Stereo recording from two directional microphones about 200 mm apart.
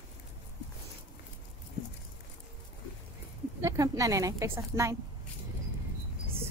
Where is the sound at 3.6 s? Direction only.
15° right (ahead or behind).